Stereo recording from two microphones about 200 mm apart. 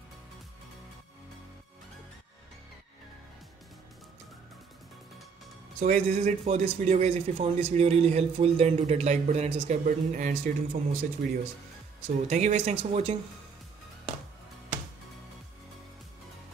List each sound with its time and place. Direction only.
5.8 s speech: 35° right (ahead or behind)
12.3 s speech: 35° right (ahead or behind)